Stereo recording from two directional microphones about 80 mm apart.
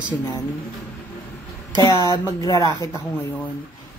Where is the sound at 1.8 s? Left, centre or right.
Left.